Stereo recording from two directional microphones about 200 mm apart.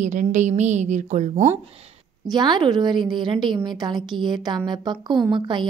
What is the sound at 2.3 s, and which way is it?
A woman's voice, 20° right (ahead or behind).